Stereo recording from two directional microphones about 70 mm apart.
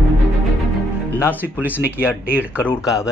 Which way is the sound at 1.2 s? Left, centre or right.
Left.